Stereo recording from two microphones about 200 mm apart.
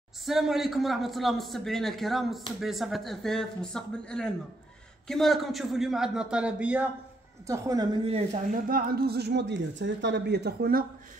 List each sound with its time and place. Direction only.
0.2 s a man's voice: centre (ahead or behind); by 10.9 s 50° right (ahead or behind)